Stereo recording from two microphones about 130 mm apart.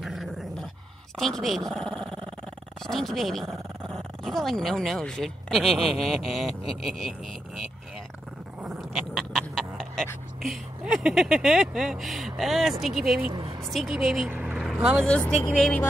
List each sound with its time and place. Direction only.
0.0 s dog: centre (ahead or behind)
1.1 s speech: centre (ahead or behind)
8.6 s dog: centre (ahead or behind)
10.4 s speech: 5° right (ahead or behind)
13.3 s vehicle: 35° right (ahead or behind)
13.7 s speech: centre (ahead or behind)
14.3 s vehicle: 5° right (ahead or behind)
15.0 s speech: 10° left (ahead or behind)